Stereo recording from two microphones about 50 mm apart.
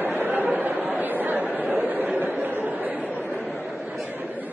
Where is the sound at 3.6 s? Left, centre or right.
Right.